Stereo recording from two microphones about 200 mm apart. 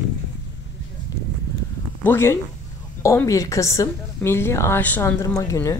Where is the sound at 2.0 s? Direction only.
10° left (ahead or behind).